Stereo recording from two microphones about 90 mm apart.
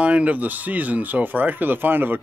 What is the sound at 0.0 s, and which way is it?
Speech, 15° right (ahead or behind).